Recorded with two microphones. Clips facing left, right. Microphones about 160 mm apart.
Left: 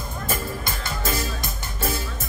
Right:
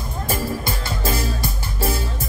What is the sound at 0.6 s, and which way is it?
Music, 30° right (ahead or behind).